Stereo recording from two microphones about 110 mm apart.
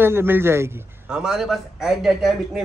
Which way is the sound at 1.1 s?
5° right (ahead or behind).